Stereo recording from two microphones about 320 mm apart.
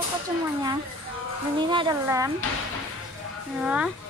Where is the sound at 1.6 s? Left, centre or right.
Centre.